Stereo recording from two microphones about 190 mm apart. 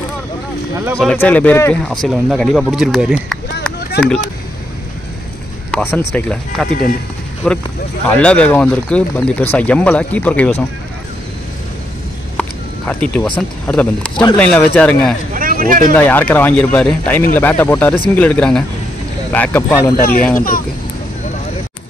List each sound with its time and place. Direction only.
0.9 s speech: 5° left (ahead or behind)
5.7 s speech: 10° left (ahead or behind)
12.4 s a sound: 5° left (ahead or behind)
13.7 s speech: 5° left (ahead or behind)
15.3 s speech: 45° right (ahead or behind)
15.9 s speech: 10° left (ahead or behind)
20.0 s speech: 50° left (ahead or behind)